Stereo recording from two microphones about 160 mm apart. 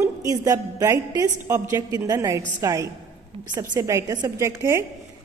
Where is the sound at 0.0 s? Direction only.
20° right (ahead or behind).